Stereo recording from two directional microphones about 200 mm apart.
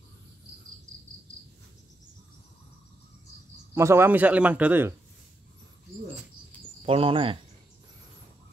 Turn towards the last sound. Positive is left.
turn(degrees=-25)  # may be behind; listen again after turning